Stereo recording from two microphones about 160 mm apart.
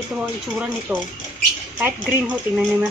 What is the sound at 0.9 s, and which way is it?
Speech, 10° right (ahead or behind).